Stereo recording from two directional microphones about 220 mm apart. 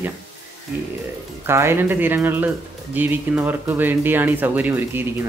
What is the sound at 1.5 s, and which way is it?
Speech, 10° right (ahead or behind).